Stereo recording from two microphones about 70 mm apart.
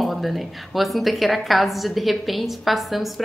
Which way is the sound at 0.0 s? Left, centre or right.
Centre.